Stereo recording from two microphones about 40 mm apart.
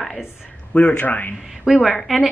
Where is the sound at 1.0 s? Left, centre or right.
Left.